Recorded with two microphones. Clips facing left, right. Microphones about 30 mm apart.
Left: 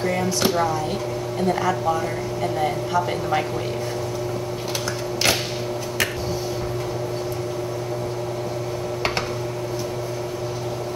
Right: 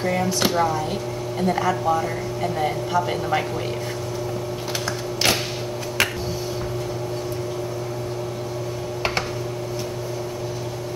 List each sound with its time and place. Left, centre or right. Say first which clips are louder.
0.0 s speech: even; centre